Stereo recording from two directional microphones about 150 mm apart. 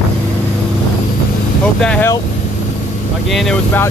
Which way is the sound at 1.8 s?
5° left (ahead or behind).